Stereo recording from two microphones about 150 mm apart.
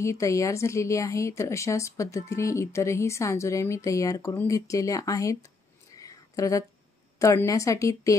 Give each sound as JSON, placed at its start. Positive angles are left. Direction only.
{"t": 0.0, "sound": "speech", "side_deg": 20}
{"t": 5.9, "sound": "a sound", "side_deg": 20}
{"t": 7.2, "sound": "speech", "side_deg": 20}